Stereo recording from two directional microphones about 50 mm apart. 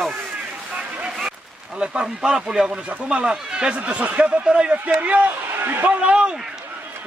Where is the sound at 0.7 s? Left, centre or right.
Centre.